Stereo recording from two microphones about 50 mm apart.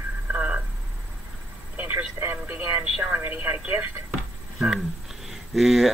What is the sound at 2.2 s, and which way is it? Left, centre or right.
Speech, right.